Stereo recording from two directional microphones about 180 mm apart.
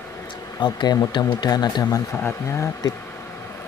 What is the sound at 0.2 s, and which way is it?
Speech, 20° left (ahead or behind).